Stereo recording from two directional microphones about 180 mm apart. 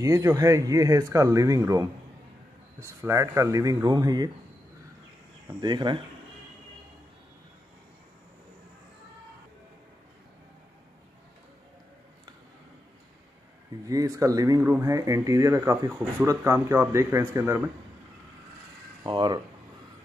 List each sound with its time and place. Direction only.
0.0 s speech: 15° right (ahead or behind)
5.6 s speech: 25° right (ahead or behind)
13.8 s speech: 20° right (ahead or behind)
19.0 s speech: 25° right (ahead or behind)